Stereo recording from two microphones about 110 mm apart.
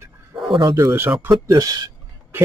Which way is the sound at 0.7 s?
25° right (ahead or behind).